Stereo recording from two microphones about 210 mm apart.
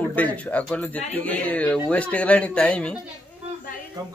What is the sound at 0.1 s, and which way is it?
Speech, 5° left (ahead or behind).